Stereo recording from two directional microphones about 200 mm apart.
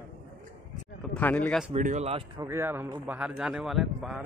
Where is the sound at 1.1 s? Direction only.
10° left (ahead or behind).